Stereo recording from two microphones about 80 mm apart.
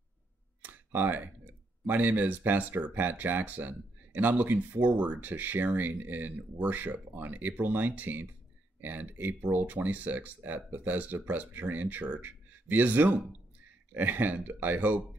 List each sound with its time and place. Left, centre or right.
0.6 s speech: right